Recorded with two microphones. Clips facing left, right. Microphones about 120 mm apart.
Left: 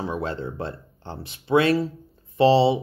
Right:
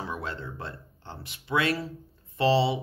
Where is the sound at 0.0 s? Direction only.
25° left (ahead or behind).